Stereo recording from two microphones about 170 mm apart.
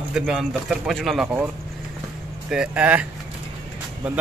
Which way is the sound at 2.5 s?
5° right (ahead or behind).